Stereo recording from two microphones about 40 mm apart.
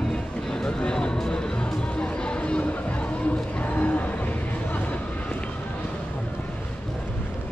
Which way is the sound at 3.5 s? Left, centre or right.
Left.